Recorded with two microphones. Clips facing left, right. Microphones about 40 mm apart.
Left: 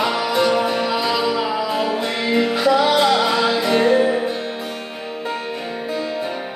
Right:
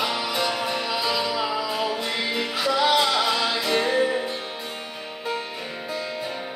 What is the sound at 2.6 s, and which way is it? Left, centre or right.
Music, centre.